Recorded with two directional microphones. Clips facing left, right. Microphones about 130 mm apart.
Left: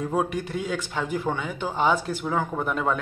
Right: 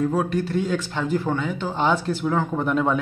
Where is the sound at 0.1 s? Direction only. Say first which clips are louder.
Right 3 dB; 15° left (ahead or behind).